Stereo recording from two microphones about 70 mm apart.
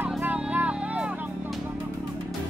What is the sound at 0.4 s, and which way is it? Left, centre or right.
Music, centre.